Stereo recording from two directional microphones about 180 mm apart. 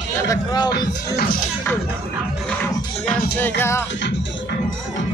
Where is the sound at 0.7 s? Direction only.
55° left (ahead or behind).